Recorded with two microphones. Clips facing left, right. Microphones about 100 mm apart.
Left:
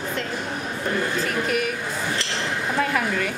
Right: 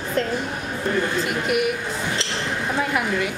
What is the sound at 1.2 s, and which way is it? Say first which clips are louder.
Speech: right 2 dB; 15° right (ahead or behind).